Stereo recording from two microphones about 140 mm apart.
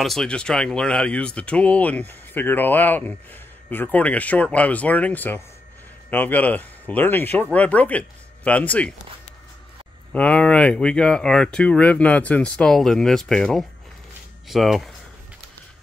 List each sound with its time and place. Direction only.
0.0 s speech: 5° left (ahead or behind)
10.1 s speech: 10° left (ahead or behind)